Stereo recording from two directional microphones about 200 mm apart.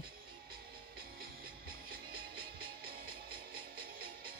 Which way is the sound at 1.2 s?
50° right (ahead or behind).